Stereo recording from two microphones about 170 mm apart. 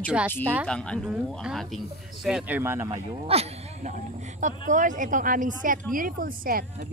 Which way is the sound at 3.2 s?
35° right (ahead or behind).